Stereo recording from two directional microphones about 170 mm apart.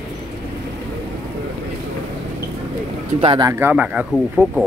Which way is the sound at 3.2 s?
30° right (ahead or behind).